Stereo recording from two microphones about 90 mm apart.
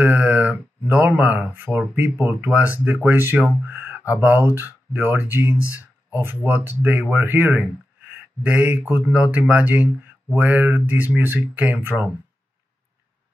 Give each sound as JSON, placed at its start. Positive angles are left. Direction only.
{"t": 0.0, "sound": "speech", "side_deg": -15}